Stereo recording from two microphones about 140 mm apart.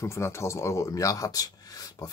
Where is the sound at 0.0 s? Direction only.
20° left (ahead or behind).